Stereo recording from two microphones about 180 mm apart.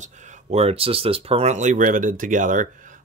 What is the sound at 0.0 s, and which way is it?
Speech, 40° right (ahead or behind).